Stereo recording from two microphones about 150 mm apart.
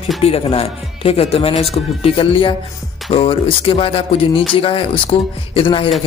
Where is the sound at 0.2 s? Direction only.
40° left (ahead or behind).